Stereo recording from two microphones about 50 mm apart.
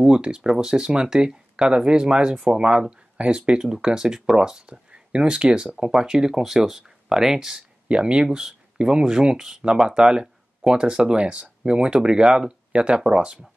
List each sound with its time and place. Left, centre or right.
0.0 s speech: centre